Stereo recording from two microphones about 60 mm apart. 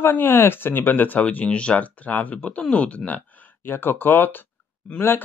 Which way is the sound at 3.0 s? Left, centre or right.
Left.